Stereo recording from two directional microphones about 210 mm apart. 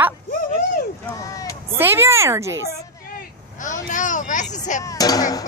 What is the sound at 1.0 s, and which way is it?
Speech, 15° left (ahead or behind).